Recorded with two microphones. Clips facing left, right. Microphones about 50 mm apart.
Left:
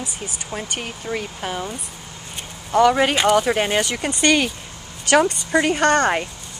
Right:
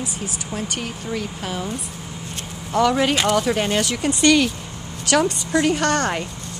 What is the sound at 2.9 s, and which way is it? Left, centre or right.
Speech, centre.